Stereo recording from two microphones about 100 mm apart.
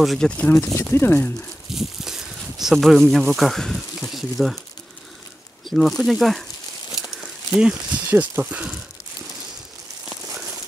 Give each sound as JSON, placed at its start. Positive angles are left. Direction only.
{"t": 0.0, "sound": "speech", "side_deg": 0}
{"t": 0.4, "sound": "speech", "side_deg": 20}
{"t": 1.7, "sound": "speech", "side_deg": -5}
{"t": 5.7, "sound": "speech", "side_deg": 0}
{"t": 10.0, "sound": "a sound", "side_deg": -5}